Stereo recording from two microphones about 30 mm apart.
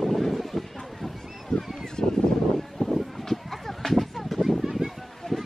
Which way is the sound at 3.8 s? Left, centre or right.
Centre.